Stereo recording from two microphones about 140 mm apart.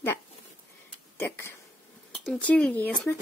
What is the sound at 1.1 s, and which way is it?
A woman's voice, 15° left (ahead or behind).